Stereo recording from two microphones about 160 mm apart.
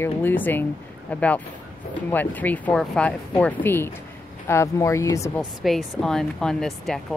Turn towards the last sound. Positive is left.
turn(degrees=0)  # may be behind; listen again after turning